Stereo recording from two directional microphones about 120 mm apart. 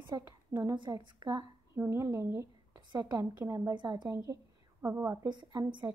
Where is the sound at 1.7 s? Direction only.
20° right (ahead or behind).